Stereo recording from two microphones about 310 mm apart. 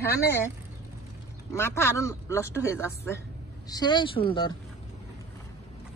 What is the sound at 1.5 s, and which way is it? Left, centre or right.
Speech, centre.